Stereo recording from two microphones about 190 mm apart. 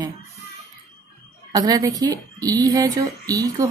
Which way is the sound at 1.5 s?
20° right (ahead or behind).